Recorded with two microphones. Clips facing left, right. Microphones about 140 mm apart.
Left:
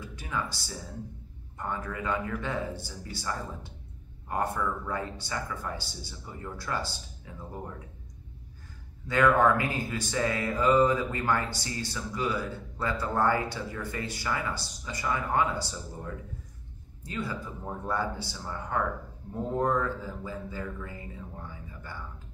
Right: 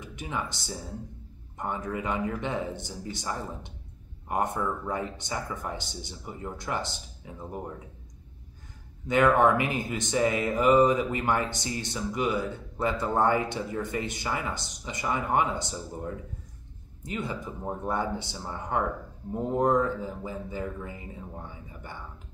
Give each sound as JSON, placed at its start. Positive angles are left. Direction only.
{"t": 0.0, "sound": "music", "side_deg": -20}
{"t": 1.6, "sound": "speech", "side_deg": -20}
{"t": 9.0, "sound": "speech", "side_deg": -20}